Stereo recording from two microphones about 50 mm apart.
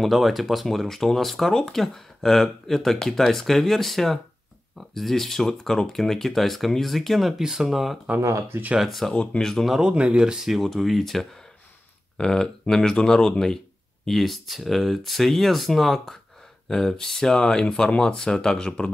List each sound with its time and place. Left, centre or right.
0.0 s speech: centre
8.2 s speech: right
8.7 s speech: centre
9.1 s speech: left
9.4 s speech: centre
9.7 s speech: centre